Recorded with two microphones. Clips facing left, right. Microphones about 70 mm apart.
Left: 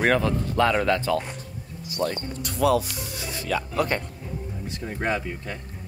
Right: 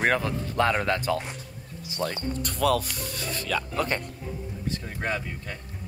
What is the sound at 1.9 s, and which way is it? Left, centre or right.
Speech, right.